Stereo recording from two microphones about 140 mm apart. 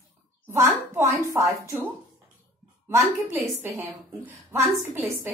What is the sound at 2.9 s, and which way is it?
A woman's voice, 20° right (ahead or behind).